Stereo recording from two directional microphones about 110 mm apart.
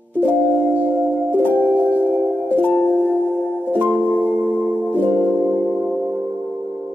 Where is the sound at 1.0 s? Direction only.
15° left (ahead or behind).